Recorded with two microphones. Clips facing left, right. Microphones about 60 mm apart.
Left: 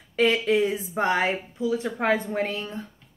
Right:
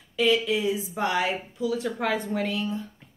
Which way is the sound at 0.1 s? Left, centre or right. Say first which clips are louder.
Left 2 dB; left.